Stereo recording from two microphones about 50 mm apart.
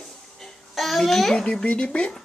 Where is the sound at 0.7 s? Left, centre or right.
Centre.